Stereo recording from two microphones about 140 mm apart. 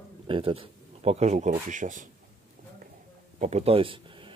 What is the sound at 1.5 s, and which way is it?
Speech, 65° right (ahead or behind).